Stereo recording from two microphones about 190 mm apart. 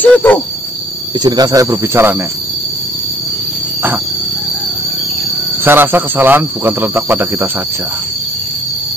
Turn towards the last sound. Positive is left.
turn(degrees=-10)  # may be behind; listen again after turning